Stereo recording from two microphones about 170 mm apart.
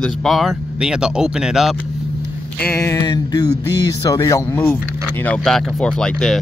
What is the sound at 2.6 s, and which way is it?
Speech, 15° left (ahead or behind).